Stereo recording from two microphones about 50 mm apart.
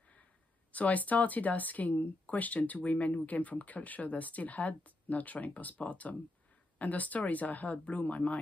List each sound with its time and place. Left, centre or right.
0.7 s speech: left